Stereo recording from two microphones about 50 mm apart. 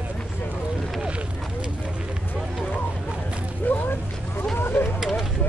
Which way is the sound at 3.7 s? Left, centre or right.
Left.